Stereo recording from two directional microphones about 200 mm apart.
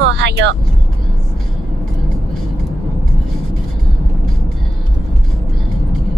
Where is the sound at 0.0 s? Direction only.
60° right (ahead or behind).